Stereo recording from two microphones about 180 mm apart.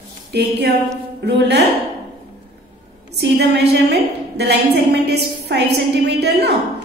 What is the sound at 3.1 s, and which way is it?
A woman's voice, 70° right (ahead or behind).